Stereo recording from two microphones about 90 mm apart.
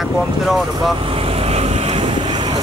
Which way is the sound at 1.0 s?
90° right.